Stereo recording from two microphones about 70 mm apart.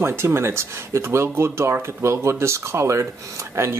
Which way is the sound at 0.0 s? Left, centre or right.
Right.